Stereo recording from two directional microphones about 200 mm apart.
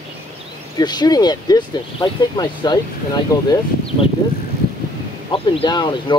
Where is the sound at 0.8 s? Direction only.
20° left (ahead or behind).